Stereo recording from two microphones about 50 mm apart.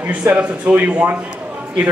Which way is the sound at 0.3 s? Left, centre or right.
Right.